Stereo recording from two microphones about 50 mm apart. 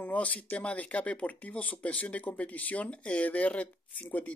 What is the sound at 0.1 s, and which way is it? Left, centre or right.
Speech, left.